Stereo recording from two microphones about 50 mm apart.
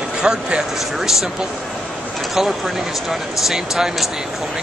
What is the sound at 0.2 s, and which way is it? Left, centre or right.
Speech, centre.